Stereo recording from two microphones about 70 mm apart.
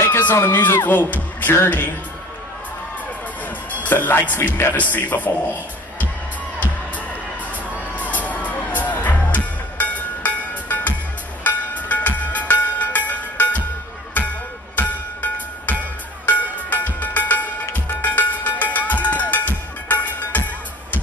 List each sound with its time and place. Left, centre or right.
0.2 s speech: left
3.8 s speech: left
4.7 s speech: left
7.9 s music: left
14.8 s music: left